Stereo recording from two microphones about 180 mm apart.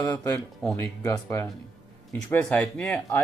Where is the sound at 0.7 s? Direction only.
15° left (ahead or behind).